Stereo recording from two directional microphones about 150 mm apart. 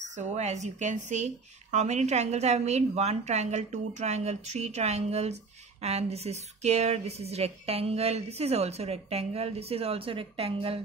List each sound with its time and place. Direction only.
0.1 s speech: 50° right (ahead or behind)